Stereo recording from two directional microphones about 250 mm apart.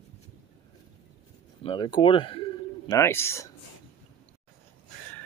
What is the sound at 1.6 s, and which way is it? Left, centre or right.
A man's voice, centre.